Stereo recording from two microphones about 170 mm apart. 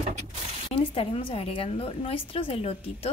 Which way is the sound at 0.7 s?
30° left (ahead or behind).